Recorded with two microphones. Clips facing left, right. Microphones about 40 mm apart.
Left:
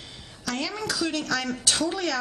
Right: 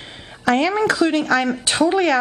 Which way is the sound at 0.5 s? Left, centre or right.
Right.